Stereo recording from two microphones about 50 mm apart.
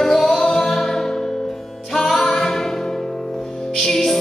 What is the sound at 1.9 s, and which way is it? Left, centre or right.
Music, centre.